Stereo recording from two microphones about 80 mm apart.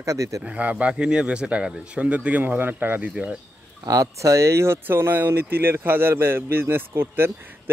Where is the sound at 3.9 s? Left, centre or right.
Right.